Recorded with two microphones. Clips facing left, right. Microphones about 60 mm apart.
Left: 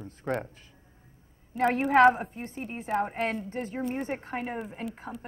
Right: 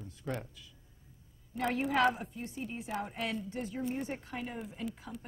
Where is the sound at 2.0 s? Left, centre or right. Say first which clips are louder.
Left 11 dB; left.